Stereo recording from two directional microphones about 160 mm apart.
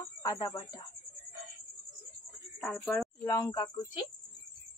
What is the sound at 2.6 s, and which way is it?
Speech, centre (ahead or behind).